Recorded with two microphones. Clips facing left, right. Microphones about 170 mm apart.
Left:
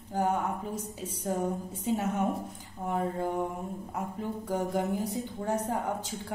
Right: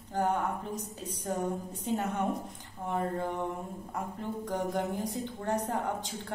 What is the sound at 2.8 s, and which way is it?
A woman's voice, 5° left (ahead or behind).